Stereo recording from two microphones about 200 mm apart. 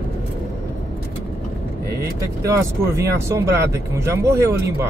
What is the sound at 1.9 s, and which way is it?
Vehicle, 15° right (ahead or behind).